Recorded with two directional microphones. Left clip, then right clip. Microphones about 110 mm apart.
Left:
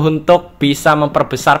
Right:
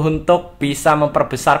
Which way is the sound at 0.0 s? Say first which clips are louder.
Left 4 dB; 20° left (ahead or behind).